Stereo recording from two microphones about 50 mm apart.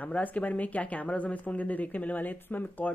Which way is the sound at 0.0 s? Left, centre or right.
Left.